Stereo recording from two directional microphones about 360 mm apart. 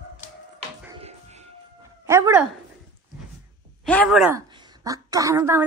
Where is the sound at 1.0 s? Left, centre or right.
Centre.